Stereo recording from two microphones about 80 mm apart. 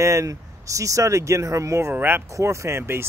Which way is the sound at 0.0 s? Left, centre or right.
Right.